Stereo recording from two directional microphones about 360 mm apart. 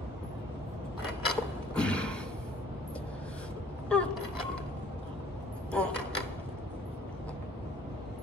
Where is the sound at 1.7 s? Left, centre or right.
Centre.